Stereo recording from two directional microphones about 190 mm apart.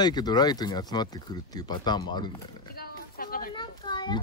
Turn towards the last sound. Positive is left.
turn(degrees=25)  # may be behind; listen again after turning